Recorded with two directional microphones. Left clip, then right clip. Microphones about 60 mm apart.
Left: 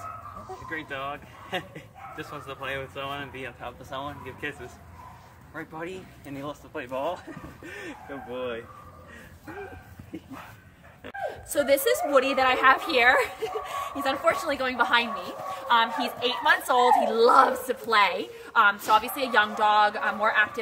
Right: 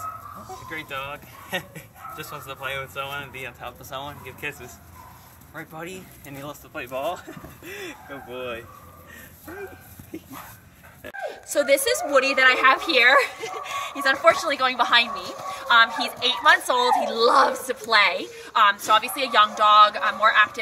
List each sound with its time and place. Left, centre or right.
0.7 s speech: centre
5.9 s a woman's voice: left
7.7 s a woman's voice: left
11.1 s a woman's voice: left
18.5 s a woman's voice: left